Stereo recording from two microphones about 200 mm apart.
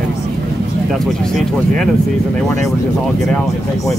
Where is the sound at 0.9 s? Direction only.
Centre (ahead or behind).